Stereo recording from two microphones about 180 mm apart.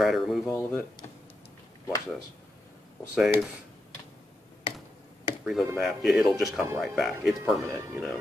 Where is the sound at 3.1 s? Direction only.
5° right (ahead or behind).